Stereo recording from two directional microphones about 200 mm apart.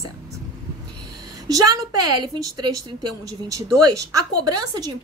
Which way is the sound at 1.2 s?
20° right (ahead or behind).